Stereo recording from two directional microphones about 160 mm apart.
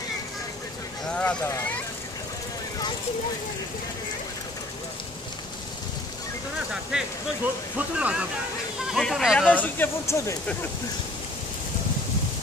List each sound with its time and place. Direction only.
1.0 s a sound: 5° left (ahead or behind)
1.4 s speech: 15° left (ahead or behind)
6.9 s speech: 5° right (ahead or behind)
9.5 s speech: 10° left (ahead or behind)